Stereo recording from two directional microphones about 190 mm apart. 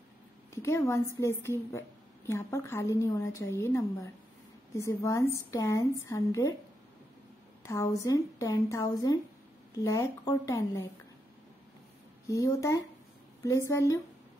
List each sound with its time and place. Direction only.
0.6 s a woman's voice: 15° left (ahead or behind)
7.6 s a woman's voice: 15° left (ahead or behind)
12.3 s a woman's voice: 15° left (ahead or behind)